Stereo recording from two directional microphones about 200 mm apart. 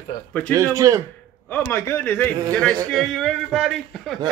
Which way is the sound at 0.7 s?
15° right (ahead or behind).